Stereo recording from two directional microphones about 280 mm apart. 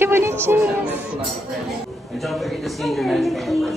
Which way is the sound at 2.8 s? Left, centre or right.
Centre.